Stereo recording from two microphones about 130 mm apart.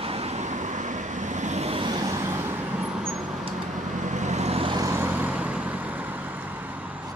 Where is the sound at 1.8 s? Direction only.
35° right (ahead or behind); by 3.2 s 5° right (ahead or behind).